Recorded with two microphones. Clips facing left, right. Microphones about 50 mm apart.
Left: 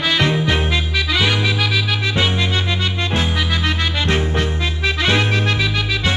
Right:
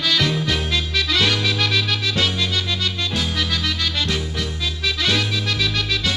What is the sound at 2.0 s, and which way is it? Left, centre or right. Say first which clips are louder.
Music: left 3 dB; left.